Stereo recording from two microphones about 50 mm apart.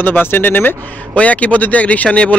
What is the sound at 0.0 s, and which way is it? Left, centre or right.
Speech, left.